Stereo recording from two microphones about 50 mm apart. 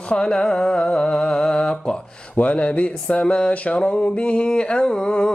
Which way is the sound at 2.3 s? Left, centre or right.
Left.